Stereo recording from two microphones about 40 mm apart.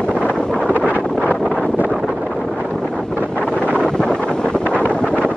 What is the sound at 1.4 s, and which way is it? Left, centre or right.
Wind noise, centre.